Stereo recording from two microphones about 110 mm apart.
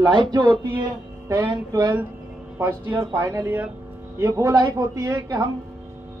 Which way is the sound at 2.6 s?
20° right (ahead or behind).